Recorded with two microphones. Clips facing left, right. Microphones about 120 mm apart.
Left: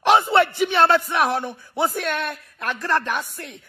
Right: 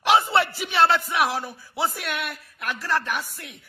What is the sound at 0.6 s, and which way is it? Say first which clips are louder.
Speech: left 3 dB; 45° left (ahead or behind).